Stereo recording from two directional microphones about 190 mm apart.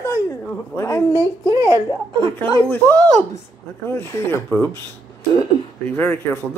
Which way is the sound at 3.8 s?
10° left (ahead or behind).